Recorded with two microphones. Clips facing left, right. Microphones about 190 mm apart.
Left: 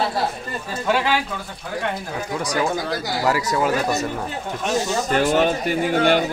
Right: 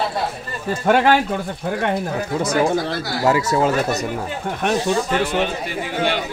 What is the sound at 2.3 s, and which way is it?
Speech, 25° right (ahead or behind).